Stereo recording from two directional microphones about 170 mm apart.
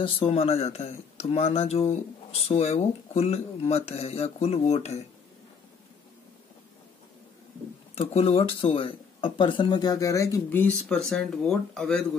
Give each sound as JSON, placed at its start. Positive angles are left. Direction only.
{"t": 0.0, "sound": "speech", "side_deg": 35}
{"t": 7.9, "sound": "speech", "side_deg": 35}